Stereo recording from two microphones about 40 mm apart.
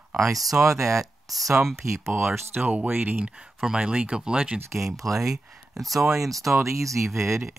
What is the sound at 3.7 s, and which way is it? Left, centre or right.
Speech, right.